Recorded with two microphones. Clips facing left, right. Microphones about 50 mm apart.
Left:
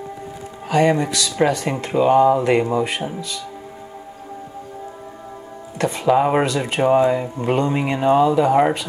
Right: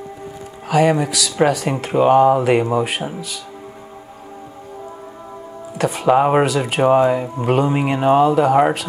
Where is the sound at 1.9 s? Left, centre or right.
Right.